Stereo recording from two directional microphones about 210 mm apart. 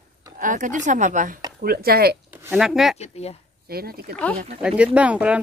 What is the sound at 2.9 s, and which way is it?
Speech, 30° left (ahead or behind).